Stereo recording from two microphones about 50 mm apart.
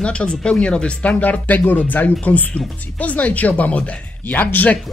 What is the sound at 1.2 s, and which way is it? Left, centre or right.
Speech, left.